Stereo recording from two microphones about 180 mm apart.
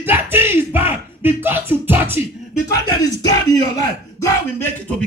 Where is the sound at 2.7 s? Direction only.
20° left (ahead or behind).